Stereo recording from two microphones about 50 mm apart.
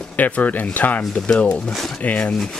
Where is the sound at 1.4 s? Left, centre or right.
Left.